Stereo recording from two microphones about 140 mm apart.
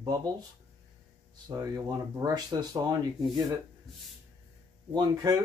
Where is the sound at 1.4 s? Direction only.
25° right (ahead or behind).